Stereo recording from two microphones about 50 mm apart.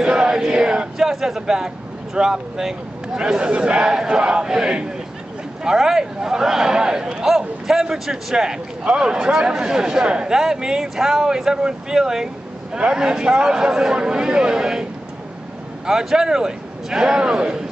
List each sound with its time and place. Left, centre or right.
0.0 s a sound: centre
0.9 s speech: centre
15.9 s speech: centre